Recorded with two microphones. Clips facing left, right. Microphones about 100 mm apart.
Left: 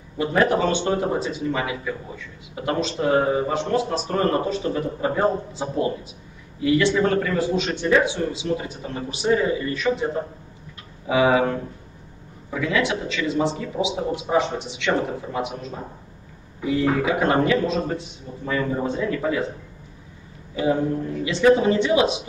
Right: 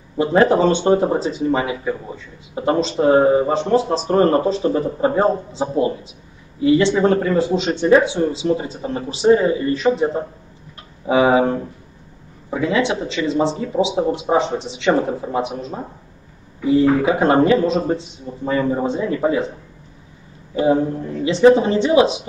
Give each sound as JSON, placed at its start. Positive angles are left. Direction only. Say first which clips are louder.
{"t": 0.2, "sound": "speech", "louder": "right 5 dB", "side_deg": -30}
{"t": 20.5, "sound": "speech", "louder": "right 5 dB", "side_deg": -30}